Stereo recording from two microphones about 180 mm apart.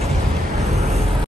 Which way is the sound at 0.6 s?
35° right (ahead or behind).